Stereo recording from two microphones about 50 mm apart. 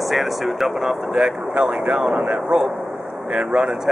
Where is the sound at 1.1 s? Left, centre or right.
Centre.